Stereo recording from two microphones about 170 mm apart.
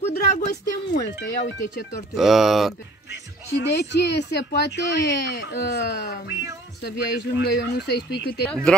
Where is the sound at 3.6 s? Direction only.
85° left.